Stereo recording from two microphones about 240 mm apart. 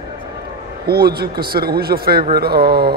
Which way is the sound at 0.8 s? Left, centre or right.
Right.